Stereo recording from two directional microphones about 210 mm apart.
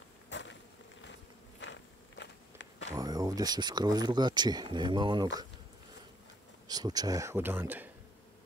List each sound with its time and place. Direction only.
0.3 s bee: 55° left (ahead or behind)
1.6 s a sound: 60° left (ahead or behind)
2.9 s speech: 15° right (ahead or behind)
6.7 s speech: 20° right (ahead or behind)